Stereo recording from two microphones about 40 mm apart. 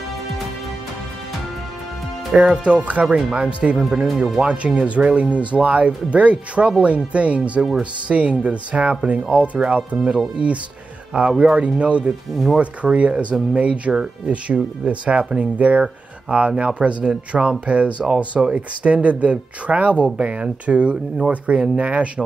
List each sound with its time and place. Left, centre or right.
2.4 s speech: right
11.5 s speech: right